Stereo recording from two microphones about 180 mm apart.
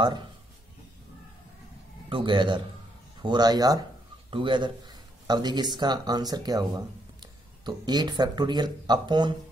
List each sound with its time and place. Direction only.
2.0 s speech: 25° right (ahead or behind)